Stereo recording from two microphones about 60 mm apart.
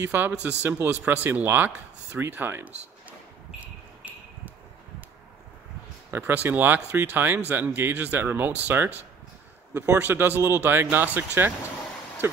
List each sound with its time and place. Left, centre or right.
0.0 s speech: right
6.1 s speech: right
9.9 s speech: right